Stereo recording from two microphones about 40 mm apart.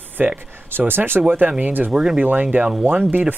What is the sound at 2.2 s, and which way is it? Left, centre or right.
Speech, right.